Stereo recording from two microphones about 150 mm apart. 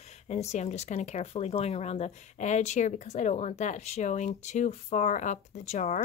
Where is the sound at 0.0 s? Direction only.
45° left (ahead or behind).